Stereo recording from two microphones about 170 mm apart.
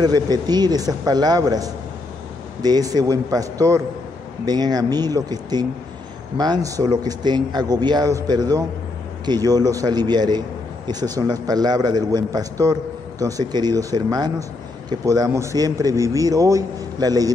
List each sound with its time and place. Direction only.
0.0 s a man's voice: 25° right (ahead or behind)